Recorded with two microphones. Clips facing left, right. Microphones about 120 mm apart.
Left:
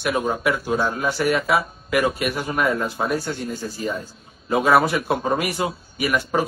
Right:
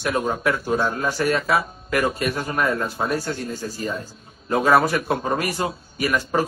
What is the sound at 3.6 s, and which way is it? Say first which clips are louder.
Speech: left 1 dB; 5° left (ahead or behind).